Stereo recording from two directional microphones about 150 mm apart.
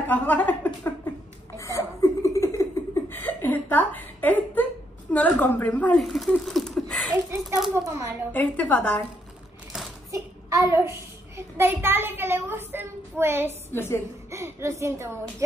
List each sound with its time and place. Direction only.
0.1 s a woman's voice: 10° left (ahead or behind)
1.6 s laughter: 20° left (ahead or behind)
5.1 s speech: 10° left (ahead or behind)
7.7 s speech: 20° right (ahead or behind)
8.3 s a woman's voice: 10° left (ahead or behind)
10.1 s child singing: 20° right (ahead or behind)
13.7 s a woman's voice: 15° left (ahead or behind)
14.3 s a woman's voice: 20° right (ahead or behind)